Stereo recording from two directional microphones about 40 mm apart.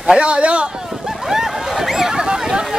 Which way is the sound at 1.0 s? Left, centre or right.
Centre.